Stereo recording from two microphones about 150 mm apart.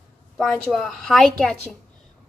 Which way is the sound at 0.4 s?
Centre (ahead or behind).